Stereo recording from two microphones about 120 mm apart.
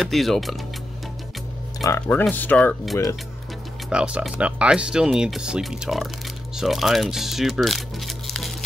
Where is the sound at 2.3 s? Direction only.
15° left (ahead or behind).